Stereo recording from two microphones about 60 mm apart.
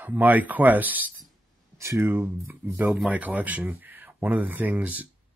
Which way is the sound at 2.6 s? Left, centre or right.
Right.